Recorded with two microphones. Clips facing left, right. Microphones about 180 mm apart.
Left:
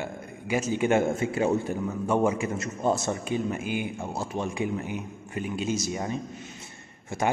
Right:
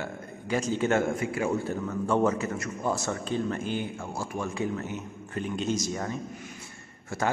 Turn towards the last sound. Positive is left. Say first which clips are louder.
# left 2 dB
turn(degrees=20)  # may be behind; listen again after turning